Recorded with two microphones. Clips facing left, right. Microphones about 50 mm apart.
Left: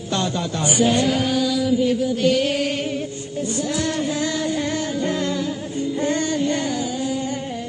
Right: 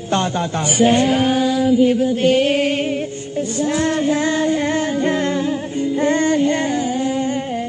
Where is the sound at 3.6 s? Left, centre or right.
Right.